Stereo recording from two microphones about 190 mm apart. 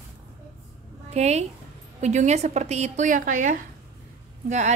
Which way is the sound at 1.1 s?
35° right (ahead or behind).